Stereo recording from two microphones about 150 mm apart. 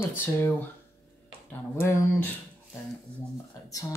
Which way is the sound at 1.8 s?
15° left (ahead or behind).